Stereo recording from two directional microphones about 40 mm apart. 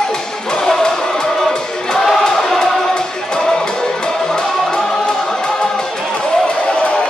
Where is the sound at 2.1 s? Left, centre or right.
Centre.